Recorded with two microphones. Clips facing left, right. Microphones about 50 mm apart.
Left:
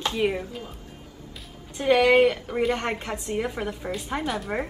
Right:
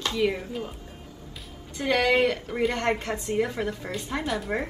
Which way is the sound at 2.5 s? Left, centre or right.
Centre.